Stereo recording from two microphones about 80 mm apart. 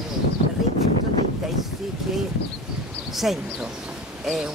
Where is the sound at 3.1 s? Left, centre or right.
Centre.